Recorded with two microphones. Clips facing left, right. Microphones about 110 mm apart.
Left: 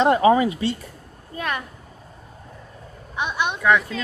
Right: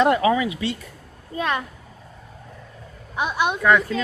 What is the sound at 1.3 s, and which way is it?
Speech, 25° right (ahead or behind).